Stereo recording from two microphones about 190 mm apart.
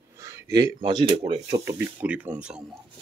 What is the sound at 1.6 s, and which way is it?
Speech, 10° right (ahead or behind).